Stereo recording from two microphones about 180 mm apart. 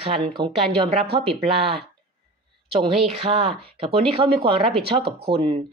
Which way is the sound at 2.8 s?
35° right (ahead or behind).